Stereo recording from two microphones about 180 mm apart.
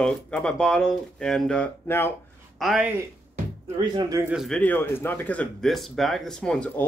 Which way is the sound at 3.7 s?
25° right (ahead or behind).